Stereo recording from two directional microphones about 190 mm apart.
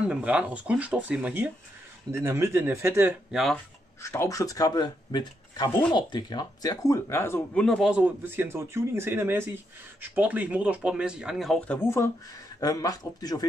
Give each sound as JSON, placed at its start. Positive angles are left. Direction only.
{"t": 0.1, "sound": "speech", "side_deg": -5}
{"t": 4.0, "sound": "speech", "side_deg": 15}